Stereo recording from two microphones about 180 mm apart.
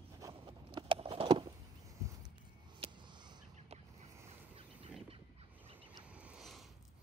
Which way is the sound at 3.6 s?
35° right (ahead or behind).